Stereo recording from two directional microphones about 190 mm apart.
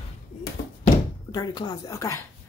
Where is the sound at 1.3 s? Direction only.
20° left (ahead or behind).